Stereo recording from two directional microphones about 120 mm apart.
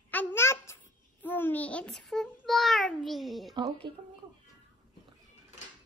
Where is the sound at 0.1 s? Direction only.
15° left (ahead or behind); by 3.5 s centre (ahead or behind).